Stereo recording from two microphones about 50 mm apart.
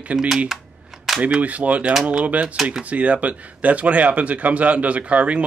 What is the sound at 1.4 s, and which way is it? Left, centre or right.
Speech, right.